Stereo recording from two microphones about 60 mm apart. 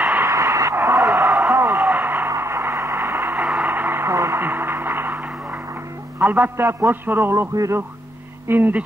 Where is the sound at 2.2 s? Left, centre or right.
Right.